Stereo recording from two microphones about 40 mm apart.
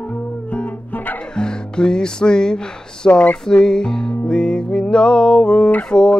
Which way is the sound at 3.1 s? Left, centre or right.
Left.